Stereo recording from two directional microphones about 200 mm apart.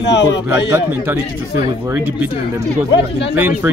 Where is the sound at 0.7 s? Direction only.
10° right (ahead or behind).